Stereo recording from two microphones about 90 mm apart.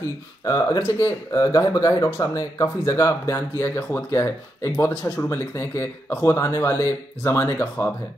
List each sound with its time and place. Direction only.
0.0 s speech: 35° left (ahead or behind)